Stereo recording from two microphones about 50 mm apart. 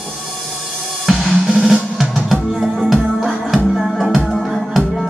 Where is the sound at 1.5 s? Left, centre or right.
Centre.